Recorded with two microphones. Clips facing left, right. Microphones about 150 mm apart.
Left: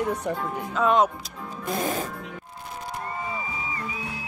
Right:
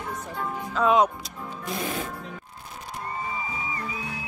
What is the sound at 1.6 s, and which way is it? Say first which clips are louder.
Speech: left 4 dB; 45° left (ahead or behind).